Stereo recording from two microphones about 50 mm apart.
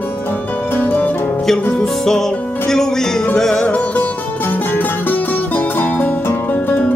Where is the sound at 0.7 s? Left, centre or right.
Left.